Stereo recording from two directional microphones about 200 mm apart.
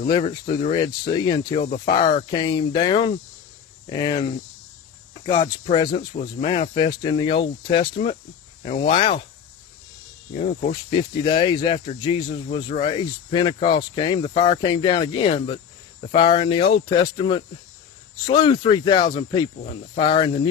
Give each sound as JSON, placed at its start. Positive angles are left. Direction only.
{"t": 0.1, "sound": "speech", "side_deg": 20}
{"t": 5.2, "sound": "speech", "side_deg": 20}
{"t": 10.3, "sound": "speech", "side_deg": 35}
{"t": 10.7, "sound": "speech", "side_deg": 25}